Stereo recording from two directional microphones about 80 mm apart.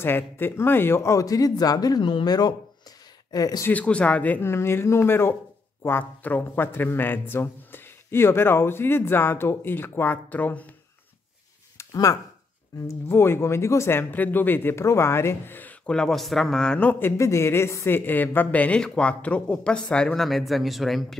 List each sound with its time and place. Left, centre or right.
0.0 s speech: left
3.7 s speech: centre
4.4 s a man's voice: left
11.8 s speech: left
12.8 s speech: left
15.9 s speech: centre
17.0 s speech: left
17.9 s speech: left
20.2 s speech: centre